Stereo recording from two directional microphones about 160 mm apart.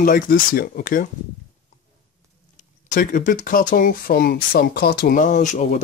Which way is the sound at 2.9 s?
60° left (ahead or behind).